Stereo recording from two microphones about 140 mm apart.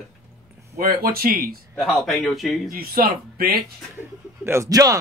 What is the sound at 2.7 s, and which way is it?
Speech, 90° right.